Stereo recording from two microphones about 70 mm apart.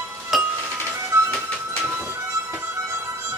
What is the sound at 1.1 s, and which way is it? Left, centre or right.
Music, right.